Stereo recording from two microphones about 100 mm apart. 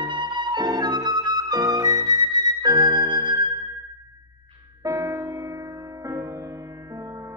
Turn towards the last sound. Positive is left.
turn(degrees=-35)  # may be behind; listen again after turning